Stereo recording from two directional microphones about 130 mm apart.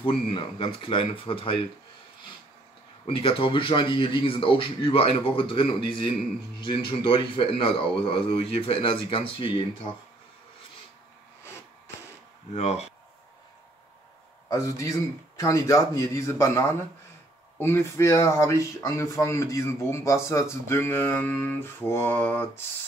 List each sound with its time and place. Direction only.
0.0 s speech: 45° left (ahead or behind)
3.1 s speech: 45° left (ahead or behind)
12.5 s speech: 55° left (ahead or behind)
14.5 s speech: 25° left (ahead or behind)
20.2 s mantra: 20° left (ahead or behind)